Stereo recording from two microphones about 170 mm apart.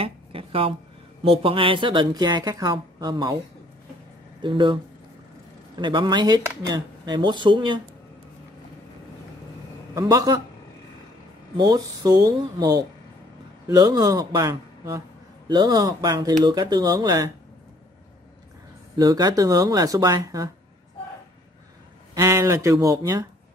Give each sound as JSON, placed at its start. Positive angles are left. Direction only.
{"t": 0.0, "sound": "a sound", "side_deg": -35}
{"t": 1.2, "sound": "a woman's voice", "side_deg": -35}
{"t": 4.4, "sound": "a woman's voice", "side_deg": -30}
{"t": 5.8, "sound": "a woman's voice", "side_deg": -25}
{"t": 9.9, "sound": "a woman's voice", "side_deg": -20}
{"t": 11.5, "sound": "a woman's voice", "side_deg": -20}
{"t": 18.9, "sound": "a woman's voice", "side_deg": -20}
{"t": 22.1, "sound": "speech", "side_deg": -15}